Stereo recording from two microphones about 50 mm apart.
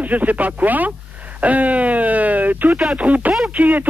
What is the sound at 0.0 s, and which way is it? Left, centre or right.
Speech, right.